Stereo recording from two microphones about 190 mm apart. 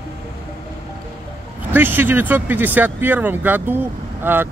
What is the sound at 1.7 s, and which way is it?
A man's voice, 10° right (ahead or behind).